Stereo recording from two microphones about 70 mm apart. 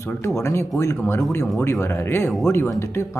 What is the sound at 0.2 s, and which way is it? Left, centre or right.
A man's voice, left.